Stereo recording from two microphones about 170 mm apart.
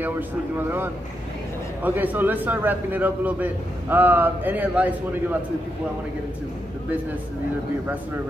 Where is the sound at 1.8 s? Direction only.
10° right (ahead or behind).